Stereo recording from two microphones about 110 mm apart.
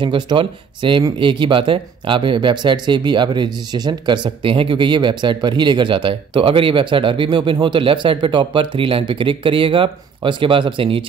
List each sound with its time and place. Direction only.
0.0 s speech: 50° right (ahead or behind)